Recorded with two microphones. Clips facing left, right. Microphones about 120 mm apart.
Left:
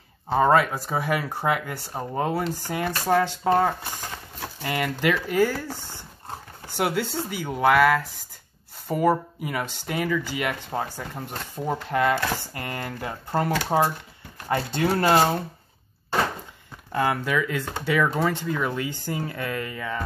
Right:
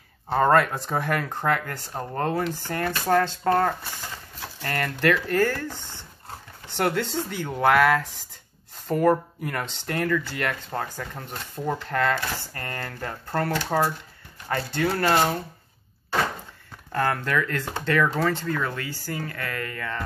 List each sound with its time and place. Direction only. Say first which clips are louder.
0.3 s speech: even; 5° left (ahead or behind); by 15.3 s 25° left (ahead or behind)
16.9 s speech: left 1 dB; 10° left (ahead or behind)